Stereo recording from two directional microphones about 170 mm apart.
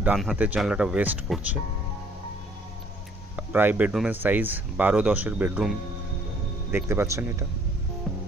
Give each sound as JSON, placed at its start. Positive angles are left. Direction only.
{"t": 0.0, "sound": "speech", "side_deg": -5}
{"t": 3.3, "sound": "speech", "side_deg": -10}